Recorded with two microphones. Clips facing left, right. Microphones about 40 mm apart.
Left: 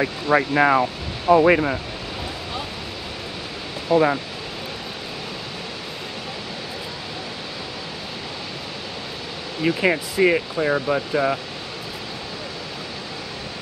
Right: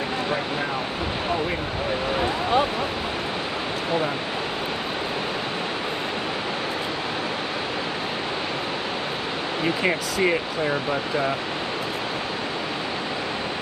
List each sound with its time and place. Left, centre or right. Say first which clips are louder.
0.3 s speech: left 9 dB; left
3.9 s speech: left 8 dB; right
9.8 s speech: left 6 dB; centre